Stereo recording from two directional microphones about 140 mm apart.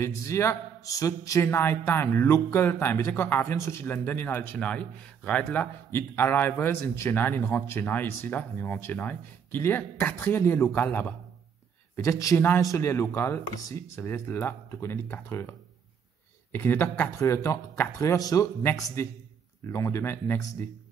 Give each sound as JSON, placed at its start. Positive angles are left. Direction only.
{"t": 0.0, "sound": "a man's voice", "side_deg": 20}
{"t": 16.5, "sound": "a man's voice", "side_deg": 15}